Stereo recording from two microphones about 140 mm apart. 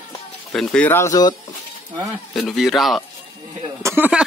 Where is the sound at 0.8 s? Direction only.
20° left (ahead or behind).